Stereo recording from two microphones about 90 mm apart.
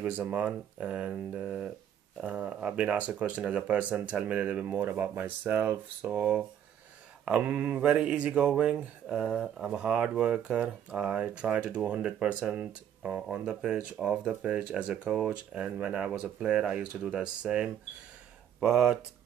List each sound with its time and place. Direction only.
0.0 s speech: 15° right (ahead or behind)